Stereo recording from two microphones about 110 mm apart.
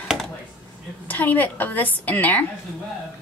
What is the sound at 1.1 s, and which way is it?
A woman's voice, 15° left (ahead or behind).